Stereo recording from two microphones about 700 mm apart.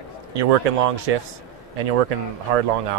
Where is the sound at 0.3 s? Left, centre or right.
Right.